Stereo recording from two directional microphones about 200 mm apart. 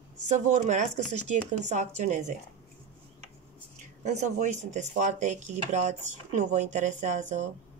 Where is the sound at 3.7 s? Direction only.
35° right (ahead or behind).